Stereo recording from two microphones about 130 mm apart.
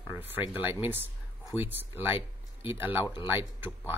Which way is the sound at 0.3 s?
15° right (ahead or behind).